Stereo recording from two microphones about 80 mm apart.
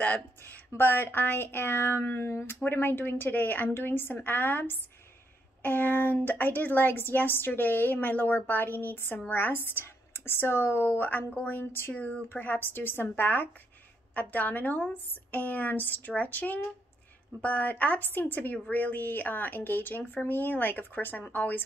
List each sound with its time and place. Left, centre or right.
0.0 s a woman's voice: left